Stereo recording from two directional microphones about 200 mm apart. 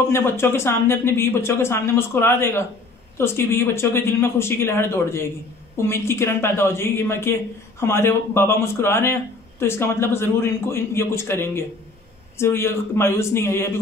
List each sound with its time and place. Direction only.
0.1 s speech: 10° left (ahead or behind)